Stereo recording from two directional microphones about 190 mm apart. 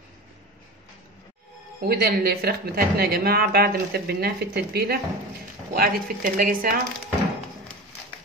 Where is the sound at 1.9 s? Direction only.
50° right (ahead or behind).